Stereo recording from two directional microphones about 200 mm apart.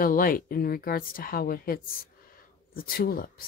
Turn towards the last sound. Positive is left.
turn(degrees=50)  # may be behind; listen again after turning